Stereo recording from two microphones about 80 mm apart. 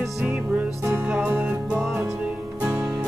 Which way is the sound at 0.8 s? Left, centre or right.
Right.